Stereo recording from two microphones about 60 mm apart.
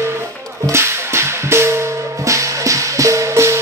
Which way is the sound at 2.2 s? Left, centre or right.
Right.